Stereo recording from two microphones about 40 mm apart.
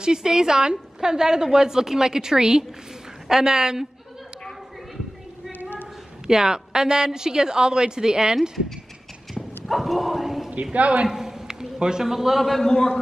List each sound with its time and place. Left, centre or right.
0.0 s a woman's voice: centre
5.6 s a sound: left
6.2 s a woman's voice: centre
8.4 s speech: centre
9.7 s bow-wow: centre
10.5 s a man's voice: right
11.1 s a man's voice: centre